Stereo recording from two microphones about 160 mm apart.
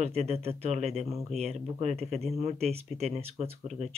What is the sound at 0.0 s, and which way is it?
Speech, 40° right (ahead or behind).